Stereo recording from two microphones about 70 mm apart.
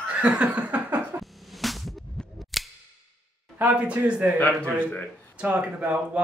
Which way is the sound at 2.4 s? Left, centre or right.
Centre.